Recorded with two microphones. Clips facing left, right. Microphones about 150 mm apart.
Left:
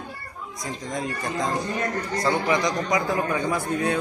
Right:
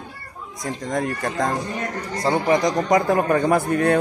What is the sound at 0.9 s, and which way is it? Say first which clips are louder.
Speech: right 5 dB; 60° right (ahead or behind).